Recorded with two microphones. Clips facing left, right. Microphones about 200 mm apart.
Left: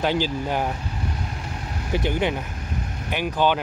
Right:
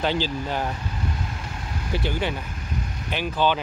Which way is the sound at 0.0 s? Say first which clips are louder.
Left 2 dB; 10° left (ahead or behind).